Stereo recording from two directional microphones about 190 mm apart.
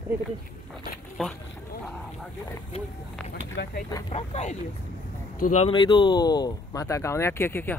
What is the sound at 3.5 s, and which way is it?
Speech, 60° left (ahead or behind).